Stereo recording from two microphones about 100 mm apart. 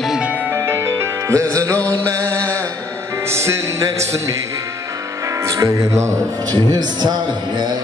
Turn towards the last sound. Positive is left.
turn(degrees=-45)  # may be behind; listen again after turning